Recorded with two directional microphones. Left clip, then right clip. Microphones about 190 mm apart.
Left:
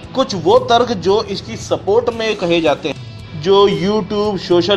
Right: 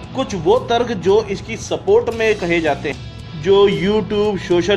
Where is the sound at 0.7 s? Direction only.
20° right (ahead or behind).